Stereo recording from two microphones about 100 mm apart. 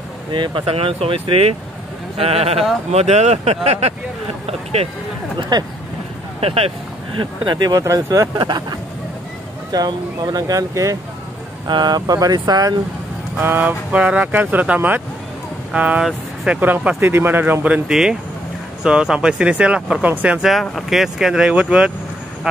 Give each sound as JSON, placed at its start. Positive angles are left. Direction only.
{"t": 0.3, "sound": "speech", "side_deg": -55}
{"t": 5.4, "sound": "speech", "side_deg": -45}
{"t": 6.4, "sound": "speech", "side_deg": -75}
{"t": 7.2, "sound": "speech", "side_deg": -50}
{"t": 7.8, "sound": "speech", "side_deg": -35}
{"t": 8.4, "sound": "speech", "side_deg": -45}
{"t": 11.6, "sound": "speech", "side_deg": -45}
{"t": 13.4, "sound": "speech", "side_deg": -20}
{"t": 20.6, "sound": "speech", "side_deg": 0}